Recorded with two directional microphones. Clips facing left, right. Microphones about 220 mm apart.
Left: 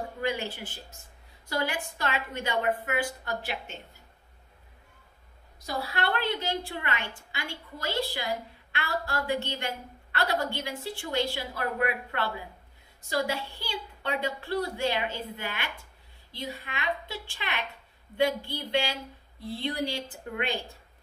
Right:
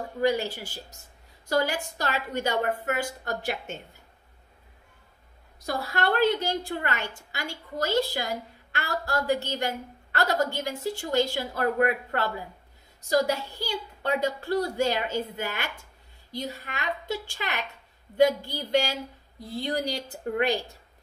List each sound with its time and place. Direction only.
0.2 s a woman's voice: 40° right (ahead or behind)
5.7 s a woman's voice: 45° right (ahead or behind)